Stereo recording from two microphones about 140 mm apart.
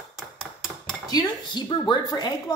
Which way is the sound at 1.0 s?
30° left (ahead or behind).